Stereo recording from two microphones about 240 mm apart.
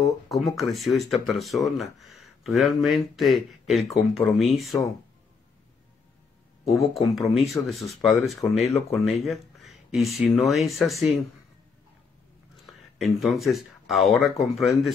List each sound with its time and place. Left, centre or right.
0.0 s speech: centre
7.3 s speech: centre
8.6 s speech: left
9.0 s speech: centre
12.6 s speech: centre